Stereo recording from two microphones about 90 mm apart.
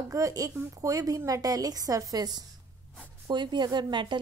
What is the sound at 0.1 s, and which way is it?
A woman's voice, 40° right (ahead or behind).